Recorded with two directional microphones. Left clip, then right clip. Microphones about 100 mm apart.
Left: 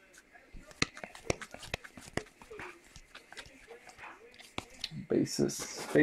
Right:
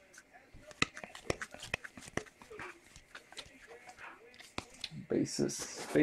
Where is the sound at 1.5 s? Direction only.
Centre (ahead or behind).